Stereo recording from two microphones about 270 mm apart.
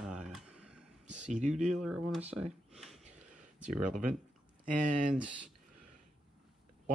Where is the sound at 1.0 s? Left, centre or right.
Right.